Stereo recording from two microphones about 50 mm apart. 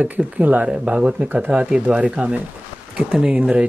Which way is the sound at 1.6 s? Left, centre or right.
Centre.